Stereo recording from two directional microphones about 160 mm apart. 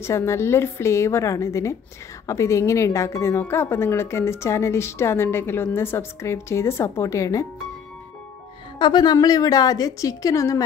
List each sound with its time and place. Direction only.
0.0 s a woman's voice: 15° left (ahead or behind)
8.7 s a woman's voice: 25° left (ahead or behind)